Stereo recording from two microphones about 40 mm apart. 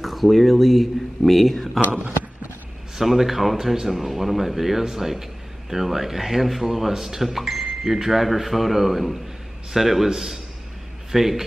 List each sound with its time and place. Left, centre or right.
0.0 s speech: centre
3.0 s a man's voice: centre